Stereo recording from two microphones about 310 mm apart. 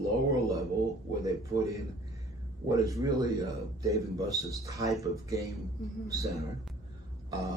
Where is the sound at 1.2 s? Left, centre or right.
Centre.